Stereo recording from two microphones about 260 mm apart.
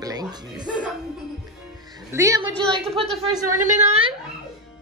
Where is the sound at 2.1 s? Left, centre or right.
Centre.